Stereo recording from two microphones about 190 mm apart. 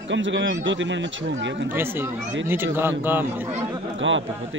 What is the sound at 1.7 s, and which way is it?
Speech, 10° right (ahead or behind).